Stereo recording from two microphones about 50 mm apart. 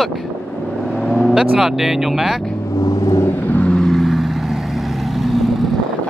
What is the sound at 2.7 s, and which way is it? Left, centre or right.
Vehicle, left.